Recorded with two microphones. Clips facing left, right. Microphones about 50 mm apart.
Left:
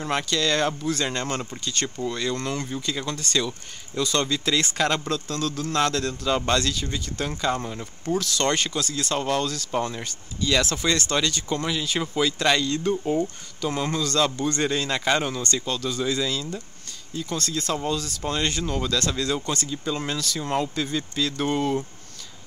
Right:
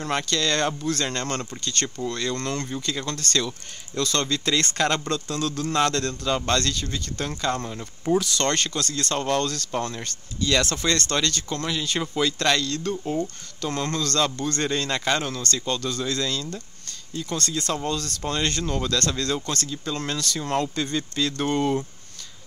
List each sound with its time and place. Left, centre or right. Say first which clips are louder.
0.0 s speech: even; centre
8.0 s speech: right 2 dB; centre